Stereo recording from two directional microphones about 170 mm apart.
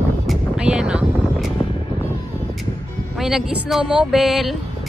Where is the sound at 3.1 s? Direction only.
Centre (ahead or behind).